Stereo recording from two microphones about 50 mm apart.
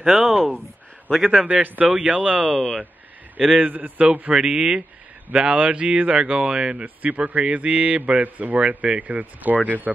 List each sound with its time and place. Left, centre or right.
0.0 s a man's voice: centre
1.5 s a man's voice: right
1.9 s a man's voice: centre
2.5 s a man's voice: centre
3.5 s a man's voice: right
4.3 s a man's voice: centre; by 9.9 s right